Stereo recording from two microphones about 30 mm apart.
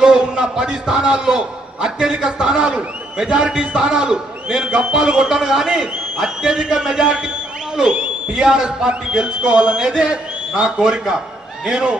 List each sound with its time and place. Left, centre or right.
0.0 s a man's voice: right
7.9 s a man's voice: right
8.4 s a man's voice: right